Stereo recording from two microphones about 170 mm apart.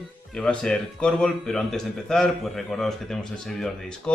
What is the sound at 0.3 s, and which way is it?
A man's voice, 5° left (ahead or behind).